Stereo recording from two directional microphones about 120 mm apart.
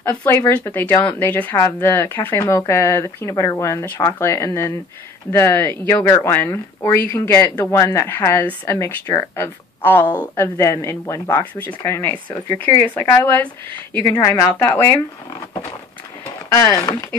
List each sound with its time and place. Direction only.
0.0 s speech: 15° left (ahead or behind)